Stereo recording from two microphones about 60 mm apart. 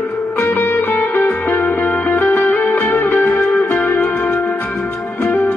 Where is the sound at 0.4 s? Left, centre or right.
Left.